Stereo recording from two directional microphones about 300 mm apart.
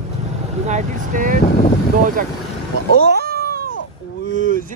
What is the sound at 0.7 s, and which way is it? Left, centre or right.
Speech, right.